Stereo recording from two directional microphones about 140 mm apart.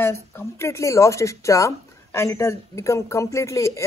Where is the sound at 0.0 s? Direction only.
20° left (ahead or behind).